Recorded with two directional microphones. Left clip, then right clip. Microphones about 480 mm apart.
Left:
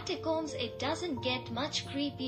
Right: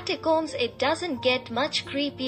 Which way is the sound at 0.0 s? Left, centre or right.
Centre.